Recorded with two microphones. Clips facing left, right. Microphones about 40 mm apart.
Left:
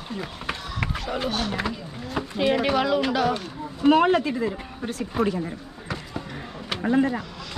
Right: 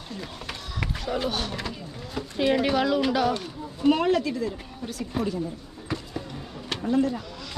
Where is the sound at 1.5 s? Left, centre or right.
Centre.